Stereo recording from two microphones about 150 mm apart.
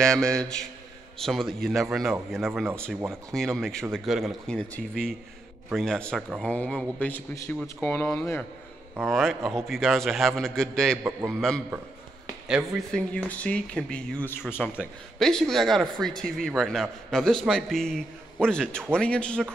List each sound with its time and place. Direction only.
0.0 s a man's voice: 5° left (ahead or behind)
11.1 s a man's voice: 15° right (ahead or behind)
12.4 s a man's voice: 5° right (ahead or behind)